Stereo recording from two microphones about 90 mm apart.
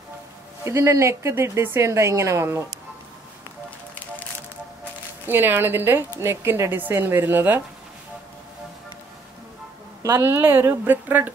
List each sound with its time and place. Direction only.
0.7 s a woman's voice: 30° right (ahead or behind)
5.2 s a woman's voice: 25° right (ahead or behind)
10.0 s a woman's voice: 30° right (ahead or behind)